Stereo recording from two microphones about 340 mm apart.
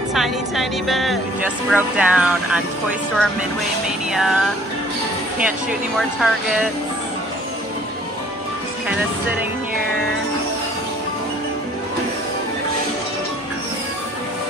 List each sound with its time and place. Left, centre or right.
0.1 s speech: centre
4.1 s speech: centre